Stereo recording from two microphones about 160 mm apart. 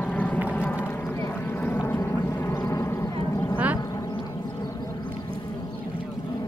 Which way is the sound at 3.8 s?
20° left (ahead or behind).